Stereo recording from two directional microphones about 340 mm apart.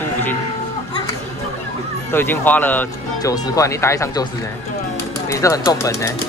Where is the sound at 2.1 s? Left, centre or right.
Centre.